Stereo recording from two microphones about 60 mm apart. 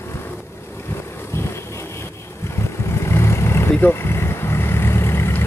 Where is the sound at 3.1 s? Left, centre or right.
Left.